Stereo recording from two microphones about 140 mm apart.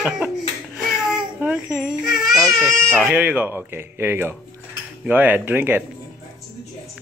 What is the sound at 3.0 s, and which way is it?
Speech, 10° right (ahead or behind).